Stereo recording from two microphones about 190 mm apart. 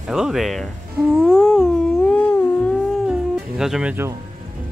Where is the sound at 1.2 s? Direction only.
5° left (ahead or behind).